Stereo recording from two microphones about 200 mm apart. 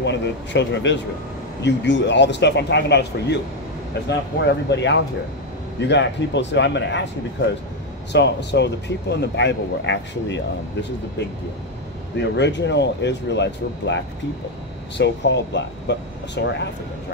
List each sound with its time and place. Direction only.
0.0 s speech: 60° left (ahead or behind)
4.4 s speech: 60° left (ahead or behind)
8.1 s speech: 60° left (ahead or behind)
15.0 s speech: 60° left (ahead or behind)